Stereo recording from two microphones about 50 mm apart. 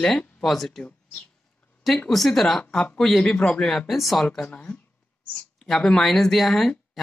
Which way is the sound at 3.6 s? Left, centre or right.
Centre.